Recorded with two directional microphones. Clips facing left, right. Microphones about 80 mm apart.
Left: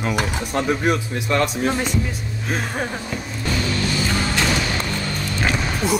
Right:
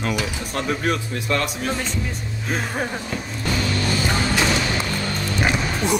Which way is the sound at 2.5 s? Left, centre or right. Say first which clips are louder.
Even; centre.